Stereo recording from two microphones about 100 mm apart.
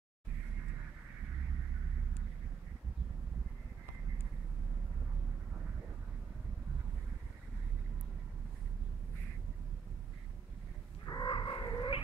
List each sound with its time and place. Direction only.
11.1 s cat: 45° left (ahead or behind)